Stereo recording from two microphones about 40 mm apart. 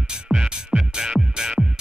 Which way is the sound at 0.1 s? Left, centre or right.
Centre.